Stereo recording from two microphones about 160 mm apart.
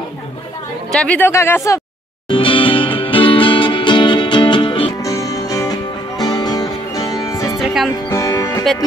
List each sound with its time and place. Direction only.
0.9 s speech: 10° left (ahead or behind)
2.2 s music: 30° left (ahead or behind)
5.0 s music: 20° left (ahead or behind)
7.5 s music: centre (ahead or behind)
8.1 s music: 20° left (ahead or behind)